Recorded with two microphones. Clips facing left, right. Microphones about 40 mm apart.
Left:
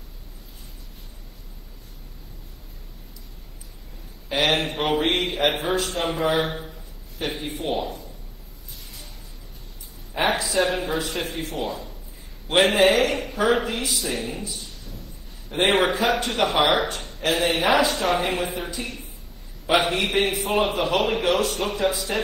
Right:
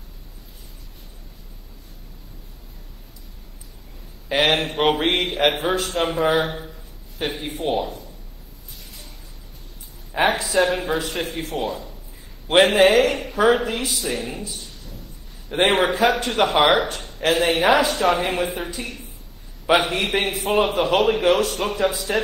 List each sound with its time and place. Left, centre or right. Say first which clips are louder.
4.3 s a man's voice: right 2 dB; right
10.1 s a man's voice: right 3 dB; right
15.5 s a man's voice: right 2 dB; right